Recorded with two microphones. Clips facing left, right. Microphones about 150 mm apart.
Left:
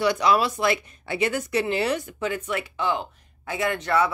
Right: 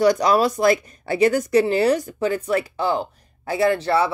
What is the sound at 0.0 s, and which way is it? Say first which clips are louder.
A woman's voice: right 4 dB; 40° right (ahead or behind).